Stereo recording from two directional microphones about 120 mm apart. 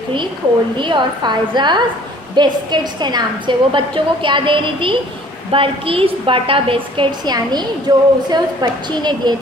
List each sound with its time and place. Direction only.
0.7 s a woman's voice: 40° right (ahead or behind)